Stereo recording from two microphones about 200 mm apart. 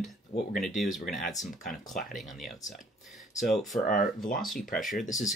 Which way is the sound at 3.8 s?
45° left (ahead or behind).